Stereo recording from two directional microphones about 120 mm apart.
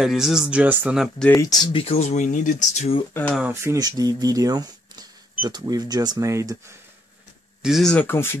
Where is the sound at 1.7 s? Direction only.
55° left (ahead or behind); by 3.0 s 70° left (ahead or behind).